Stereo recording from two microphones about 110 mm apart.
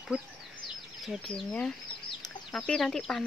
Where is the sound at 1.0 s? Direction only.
Centre (ahead or behind).